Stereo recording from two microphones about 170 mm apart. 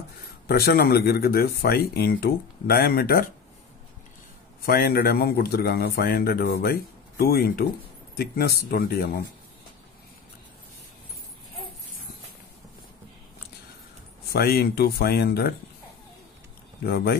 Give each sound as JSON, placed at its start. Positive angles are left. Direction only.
{"t": 0.5, "sound": "speech", "side_deg": 65}
{"t": 4.6, "sound": "speech", "side_deg": 65}
{"t": 14.3, "sound": "speech", "side_deg": 65}
{"t": 16.8, "sound": "speech", "side_deg": 65}